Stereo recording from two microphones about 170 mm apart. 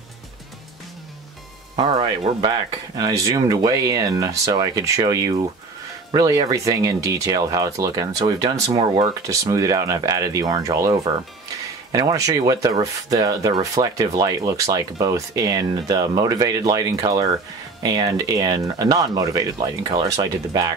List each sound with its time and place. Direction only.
1.8 s speech: 30° right (ahead or behind)